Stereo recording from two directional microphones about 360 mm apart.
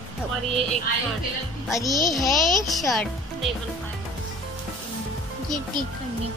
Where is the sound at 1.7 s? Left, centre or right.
Centre.